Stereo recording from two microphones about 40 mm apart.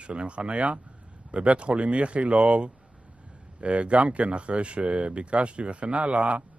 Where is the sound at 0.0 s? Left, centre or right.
Right.